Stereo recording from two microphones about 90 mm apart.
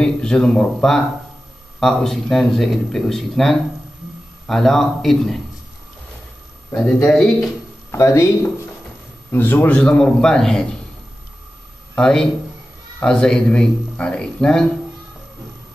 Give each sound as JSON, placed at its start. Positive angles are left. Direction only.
{"t": 0.0, "sound": "speech", "side_deg": 10}
{"t": 7.1, "sound": "speech", "side_deg": 10}
{"t": 7.4, "sound": "speech", "side_deg": 35}
{"t": 9.3, "sound": "speech", "side_deg": 25}
{"t": 11.9, "sound": "speech", "side_deg": 5}